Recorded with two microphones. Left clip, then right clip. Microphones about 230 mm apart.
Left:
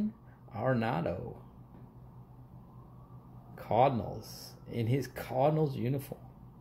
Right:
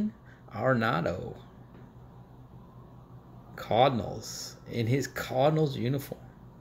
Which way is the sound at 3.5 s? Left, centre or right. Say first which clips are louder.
Right 3 dB; centre.